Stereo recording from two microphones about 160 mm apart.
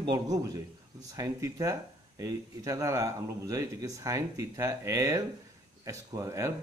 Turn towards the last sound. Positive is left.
turn(degrees=-20)  # may be behind; listen again after turning